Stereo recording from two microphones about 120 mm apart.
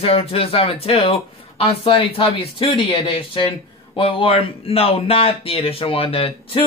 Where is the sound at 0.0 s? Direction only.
55° left (ahead or behind).